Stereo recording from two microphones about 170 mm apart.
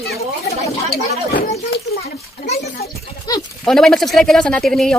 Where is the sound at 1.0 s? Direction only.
45° left (ahead or behind).